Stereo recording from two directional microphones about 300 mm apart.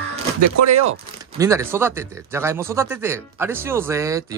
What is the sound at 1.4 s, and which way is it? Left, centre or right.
Speech, centre.